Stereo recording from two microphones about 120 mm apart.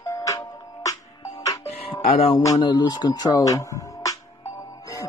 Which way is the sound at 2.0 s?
60° left (ahead or behind).